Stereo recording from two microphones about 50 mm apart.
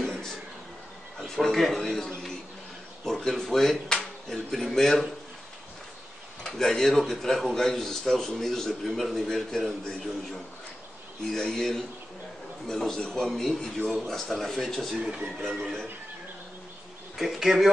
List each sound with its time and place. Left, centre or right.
0.0 s a sound: centre
4.3 s speech: centre
6.4 s a man's voice: centre
15.0 s speech: right
17.2 s speech: centre